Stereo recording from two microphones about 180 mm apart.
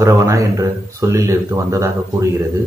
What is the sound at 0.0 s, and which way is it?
Speech, 15° right (ahead or behind).